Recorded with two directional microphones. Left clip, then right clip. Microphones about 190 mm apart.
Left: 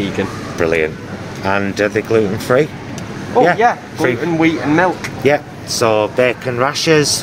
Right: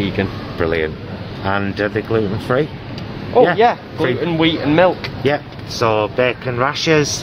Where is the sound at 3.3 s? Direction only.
55° right (ahead or behind).